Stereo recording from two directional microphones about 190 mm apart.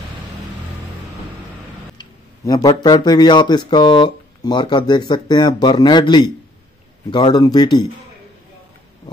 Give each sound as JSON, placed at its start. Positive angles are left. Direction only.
{"t": 2.0, "sound": "speech", "side_deg": 20}